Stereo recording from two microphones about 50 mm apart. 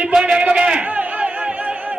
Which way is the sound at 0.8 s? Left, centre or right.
Right.